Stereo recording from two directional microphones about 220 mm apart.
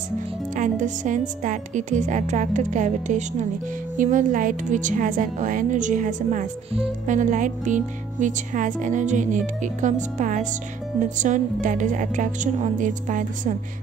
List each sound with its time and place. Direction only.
0.6 s a woman's voice: 35° right (ahead or behind)